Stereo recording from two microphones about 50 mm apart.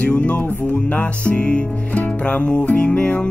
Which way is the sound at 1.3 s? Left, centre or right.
Left.